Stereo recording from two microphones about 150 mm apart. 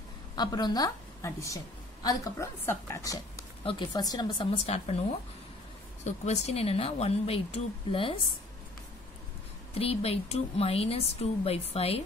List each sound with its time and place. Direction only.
0.4 s a woman's voice: 30° left (ahead or behind)
4.6 s speech: 45° left (ahead or behind)
6.0 s speech: 45° left (ahead or behind)
9.8 s speech: 40° left (ahead or behind)